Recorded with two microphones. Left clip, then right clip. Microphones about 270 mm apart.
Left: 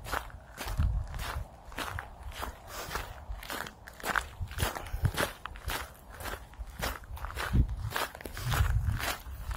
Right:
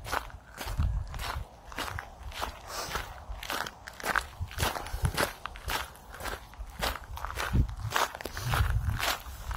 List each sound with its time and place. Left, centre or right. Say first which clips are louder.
0.0 s walk: right 2 dB; centre
7.9 s biting: right 6 dB; right
8.4 s a sound: right 2 dB; centre